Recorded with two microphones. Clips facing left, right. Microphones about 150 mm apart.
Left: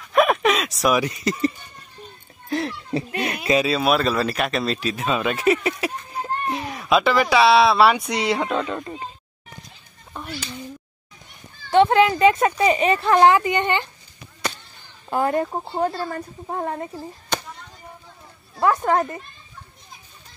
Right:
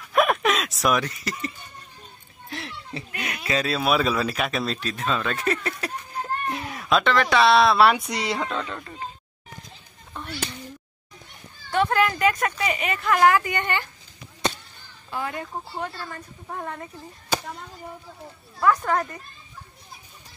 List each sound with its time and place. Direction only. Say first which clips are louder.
0.1 s a sound: left 3 dB; centre (ahead or behind)
1.0 s a woman's voice: left 8 dB; 20° left (ahead or behind)
2.5 s a sound: left 11 dB; 40° left (ahead or behind); by 3.6 s 25° left (ahead or behind)
3.6 s speech: left 3 dB; centre (ahead or behind)
4.8 s speech: left 4 dB; 10° left (ahead or behind)
8.4 s speech: left 5 dB; 15° left (ahead or behind)
10.1 s a sound: left 2 dB; 10° left (ahead or behind)
11.7 s a woman's voice: left 6 dB; 25° left (ahead or behind)
14.4 s chop: right 2 dB; 25° right (ahead or behind)
15.0 s a woman's voice: left 10 dB; 45° left (ahead or behind)
18.6 s a woman's voice: left 3 dB; 25° left (ahead or behind)